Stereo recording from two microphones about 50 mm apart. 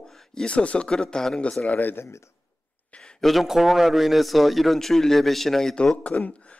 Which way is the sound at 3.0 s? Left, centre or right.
Centre.